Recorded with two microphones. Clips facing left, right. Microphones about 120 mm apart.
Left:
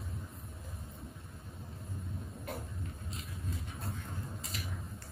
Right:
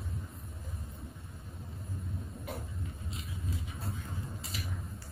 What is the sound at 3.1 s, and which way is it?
Vehicle, centre (ahead or behind).